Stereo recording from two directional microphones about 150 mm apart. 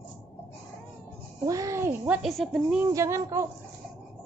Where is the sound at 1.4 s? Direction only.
20° right (ahead or behind).